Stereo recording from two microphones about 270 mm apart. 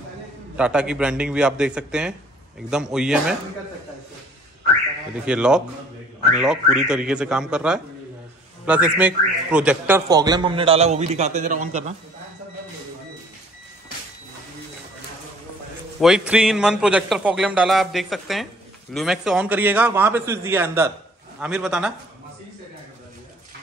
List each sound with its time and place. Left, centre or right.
0.6 s a man's voice: centre
5.2 s a man's voice: centre; by 11.9 s right
16.0 s a man's voice: centre